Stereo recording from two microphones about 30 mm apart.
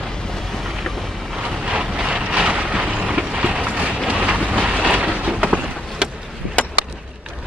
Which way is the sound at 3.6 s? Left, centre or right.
Right.